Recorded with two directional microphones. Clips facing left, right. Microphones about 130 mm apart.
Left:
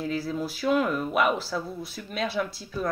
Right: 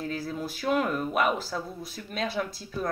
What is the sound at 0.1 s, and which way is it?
Speech, 50° right (ahead or behind).